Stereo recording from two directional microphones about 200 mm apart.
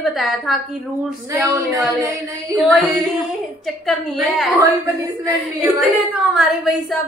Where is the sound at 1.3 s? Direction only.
15° right (ahead or behind).